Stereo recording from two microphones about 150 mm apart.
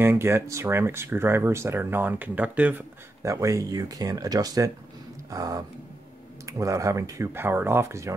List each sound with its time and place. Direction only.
0.0 s speech: 15° right (ahead or behind)
3.2 s speech: 20° right (ahead or behind)